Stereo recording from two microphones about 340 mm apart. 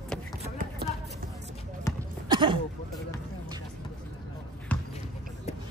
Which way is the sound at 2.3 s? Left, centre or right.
Centre.